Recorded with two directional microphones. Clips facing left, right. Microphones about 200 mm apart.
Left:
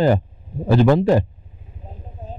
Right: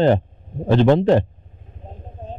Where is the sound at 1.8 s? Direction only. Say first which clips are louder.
Right 2 dB; 35° right (ahead or behind).